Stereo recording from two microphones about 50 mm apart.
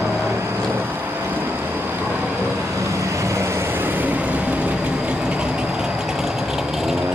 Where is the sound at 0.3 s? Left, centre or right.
Right.